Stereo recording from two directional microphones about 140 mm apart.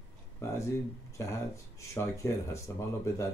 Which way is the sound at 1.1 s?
20° left (ahead or behind).